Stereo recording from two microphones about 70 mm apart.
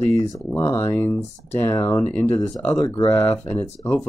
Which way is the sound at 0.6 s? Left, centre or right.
Left.